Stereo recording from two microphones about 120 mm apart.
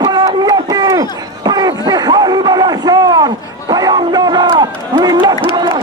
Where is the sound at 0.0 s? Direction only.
35° right (ahead or behind).